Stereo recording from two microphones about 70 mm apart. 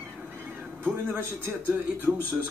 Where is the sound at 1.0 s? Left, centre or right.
Right.